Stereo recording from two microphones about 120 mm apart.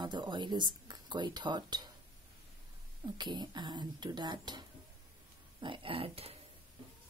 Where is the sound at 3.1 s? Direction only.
40° right (ahead or behind).